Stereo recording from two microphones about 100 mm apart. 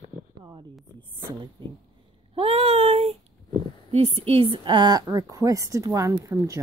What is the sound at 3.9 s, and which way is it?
A woman's voice, 80° right.